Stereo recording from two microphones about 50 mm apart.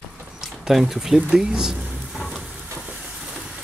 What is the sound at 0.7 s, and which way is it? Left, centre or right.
Speech, centre.